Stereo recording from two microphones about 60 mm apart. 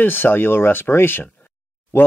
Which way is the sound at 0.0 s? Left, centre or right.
Left.